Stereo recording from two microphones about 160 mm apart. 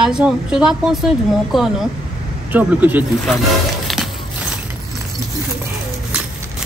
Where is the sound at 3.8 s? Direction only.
Centre (ahead or behind).